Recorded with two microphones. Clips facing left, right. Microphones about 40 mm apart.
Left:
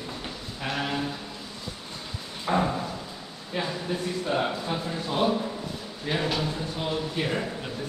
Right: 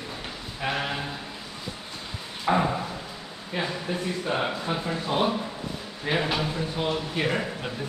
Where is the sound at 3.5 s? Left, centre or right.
Centre.